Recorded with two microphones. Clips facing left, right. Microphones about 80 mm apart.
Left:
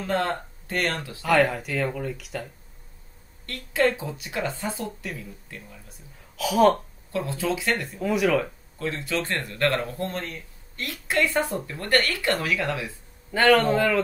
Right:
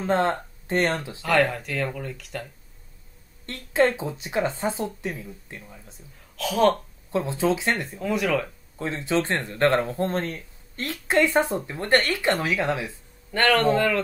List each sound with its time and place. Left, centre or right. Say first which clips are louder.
0.0 s speech: right 3 dB; right
1.2 s speech: left 1 dB; centre
3.4 s speech: right 2 dB; right
6.3 s speech: left 2 dB; centre
7.1 s speech: right 4 dB; right
8.0 s speech: left 3 dB; centre
8.7 s speech: right 3 dB; right
13.3 s speech: left 1 dB; centre